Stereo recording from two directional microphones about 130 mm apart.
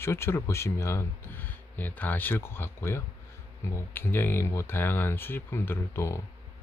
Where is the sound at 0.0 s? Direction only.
20° left (ahead or behind).